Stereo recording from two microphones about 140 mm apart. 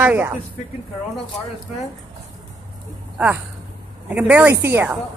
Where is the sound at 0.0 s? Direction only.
15° right (ahead or behind).